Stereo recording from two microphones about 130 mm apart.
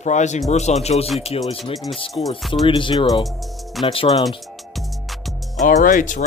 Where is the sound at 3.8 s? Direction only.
45° left (ahead or behind).